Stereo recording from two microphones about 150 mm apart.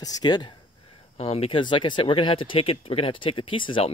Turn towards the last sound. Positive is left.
turn(degrees=35)  # may be behind; listen again after turning